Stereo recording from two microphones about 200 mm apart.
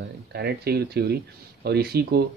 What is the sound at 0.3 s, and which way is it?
Speech, 55° right (ahead or behind).